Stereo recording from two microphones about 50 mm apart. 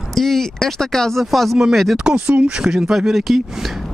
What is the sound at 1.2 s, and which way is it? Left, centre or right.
Speech, centre.